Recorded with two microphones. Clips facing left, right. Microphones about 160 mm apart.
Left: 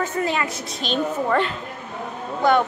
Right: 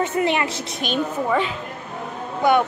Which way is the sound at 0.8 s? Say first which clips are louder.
Even; 5° right (ahead or behind).